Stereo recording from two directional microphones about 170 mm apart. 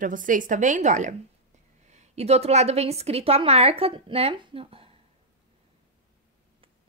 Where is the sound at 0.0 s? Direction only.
50° right (ahead or behind); by 4.9 s 35° right (ahead or behind).